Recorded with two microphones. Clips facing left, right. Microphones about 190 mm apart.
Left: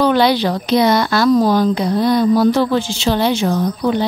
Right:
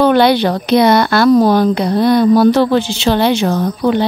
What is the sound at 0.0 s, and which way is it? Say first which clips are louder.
Speech: right 3 dB; 60° right (ahead or behind).